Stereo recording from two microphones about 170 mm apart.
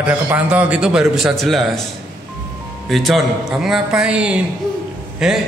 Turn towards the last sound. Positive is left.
turn(degrees=-5)  # may be behind; listen again after turning